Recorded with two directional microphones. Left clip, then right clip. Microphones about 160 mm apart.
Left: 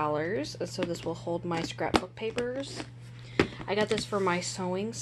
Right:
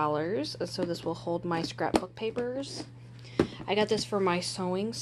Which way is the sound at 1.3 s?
30° right (ahead or behind).